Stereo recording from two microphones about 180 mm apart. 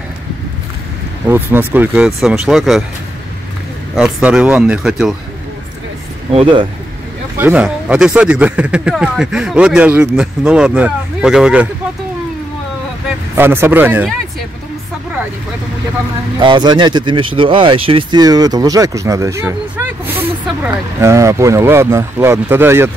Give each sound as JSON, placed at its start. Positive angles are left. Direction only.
{"t": 1.2, "sound": "speech", "side_deg": -10}
{"t": 3.9, "sound": "speech", "side_deg": -5}
{"t": 6.3, "sound": "speech", "side_deg": -30}
{"t": 7.3, "sound": "speech", "side_deg": -10}
{"t": 13.4, "sound": "speech", "side_deg": -10}
{"t": 16.3, "sound": "speech", "side_deg": -25}